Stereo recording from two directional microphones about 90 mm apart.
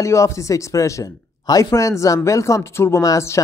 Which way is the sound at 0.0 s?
35° left (ahead or behind).